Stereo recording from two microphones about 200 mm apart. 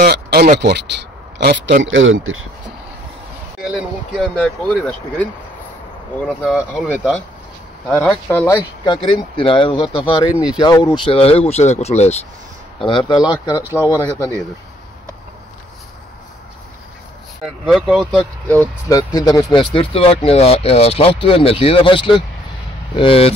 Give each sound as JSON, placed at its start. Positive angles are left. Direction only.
{"t": 0.0, "sound": "speech", "side_deg": -50}
{"t": 3.6, "sound": "speech", "side_deg": 0}
{"t": 8.0, "sound": "speech", "side_deg": 5}
{"t": 8.8, "sound": "speech", "side_deg": 25}
{"t": 10.3, "sound": "speech", "side_deg": -5}
{"t": 10.6, "sound": "speech", "side_deg": 20}
{"t": 11.1, "sound": "speech", "side_deg": 30}
{"t": 12.8, "sound": "speech", "side_deg": 20}
{"t": 13.6, "sound": "speech", "side_deg": -10}
{"t": 13.9, "sound": "speech", "side_deg": 15}
{"t": 17.6, "sound": "speech", "side_deg": 0}
{"t": 18.9, "sound": "speech", "side_deg": 20}